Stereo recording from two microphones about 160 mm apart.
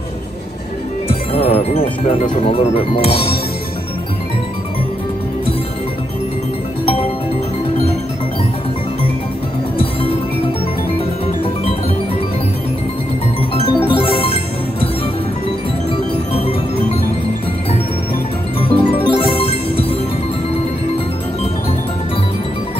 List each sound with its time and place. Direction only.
1.0 s music: 40° left (ahead or behind)
2.1 s speech: 40° left (ahead or behind)
13.8 s music: 35° left (ahead or behind)
16.3 s music: 35° left (ahead or behind)
18.6 s music: 35° left (ahead or behind)